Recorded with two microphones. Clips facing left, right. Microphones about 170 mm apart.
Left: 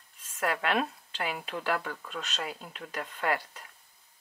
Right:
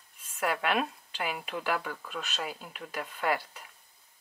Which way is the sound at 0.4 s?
5° right (ahead or behind).